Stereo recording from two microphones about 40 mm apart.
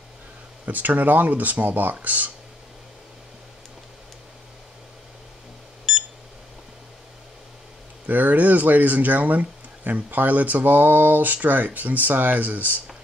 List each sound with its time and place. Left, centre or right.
0.7 s speech: right
5.9 s beep: centre
8.1 s speech: right